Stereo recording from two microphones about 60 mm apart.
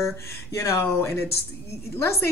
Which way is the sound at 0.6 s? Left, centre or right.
Left.